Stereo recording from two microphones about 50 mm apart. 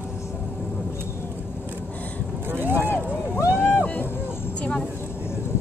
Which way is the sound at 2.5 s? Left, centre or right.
Right.